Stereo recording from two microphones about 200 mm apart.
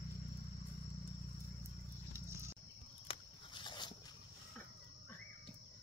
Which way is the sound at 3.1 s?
25° left (ahead or behind).